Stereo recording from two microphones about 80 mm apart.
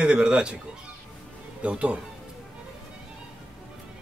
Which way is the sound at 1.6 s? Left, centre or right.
Centre.